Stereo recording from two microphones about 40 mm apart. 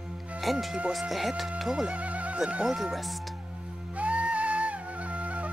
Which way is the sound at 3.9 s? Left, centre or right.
Right.